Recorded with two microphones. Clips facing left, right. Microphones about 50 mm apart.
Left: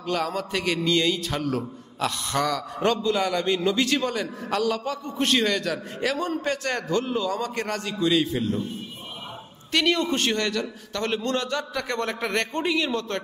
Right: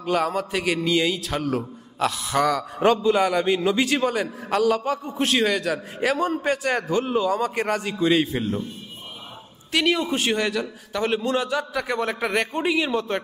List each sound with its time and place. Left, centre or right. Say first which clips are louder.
0.0 s a man's voice: right 4 dB; centre
5.1 s a man's voice: even; centre
5.9 s a man's voice: right 4 dB; centre
9.7 s a man's voice: right 1 dB; centre